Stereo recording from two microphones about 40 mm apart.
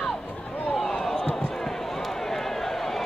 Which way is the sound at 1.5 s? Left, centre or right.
Centre.